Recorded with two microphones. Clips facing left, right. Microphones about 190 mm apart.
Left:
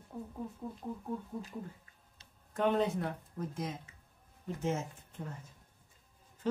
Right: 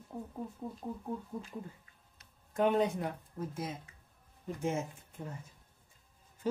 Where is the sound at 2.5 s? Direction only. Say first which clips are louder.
Right 1 dB; 10° right (ahead or behind).